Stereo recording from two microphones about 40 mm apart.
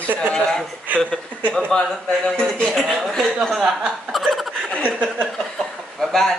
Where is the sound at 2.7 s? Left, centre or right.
Centre.